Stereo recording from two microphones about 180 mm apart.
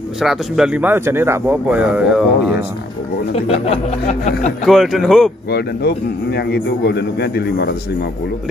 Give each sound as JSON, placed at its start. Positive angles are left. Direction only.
{"t": 0.2, "sound": "speech", "side_deg": -5}
{"t": 3.3, "sound": "a sound", "side_deg": 35}
{"t": 4.6, "sound": "speech", "side_deg": 0}
{"t": 5.5, "sound": "a man's voice", "side_deg": 60}